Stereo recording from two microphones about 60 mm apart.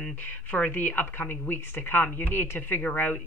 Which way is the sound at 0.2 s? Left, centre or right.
Left.